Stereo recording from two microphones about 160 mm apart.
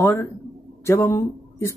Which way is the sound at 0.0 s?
15° left (ahead or behind).